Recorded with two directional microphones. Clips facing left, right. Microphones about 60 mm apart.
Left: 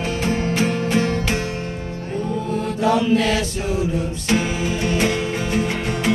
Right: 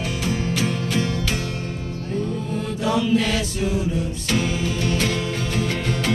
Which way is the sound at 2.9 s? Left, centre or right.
Left.